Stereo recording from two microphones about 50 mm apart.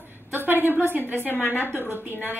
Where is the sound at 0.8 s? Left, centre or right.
Right.